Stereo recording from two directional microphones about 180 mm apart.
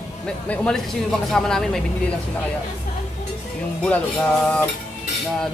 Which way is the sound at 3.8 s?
5° left (ahead or behind).